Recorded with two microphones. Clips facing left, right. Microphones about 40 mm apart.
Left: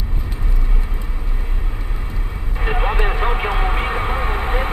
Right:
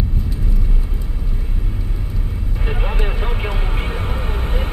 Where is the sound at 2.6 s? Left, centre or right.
Left.